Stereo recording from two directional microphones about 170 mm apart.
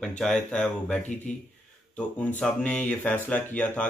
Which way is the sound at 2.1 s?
5° left (ahead or behind).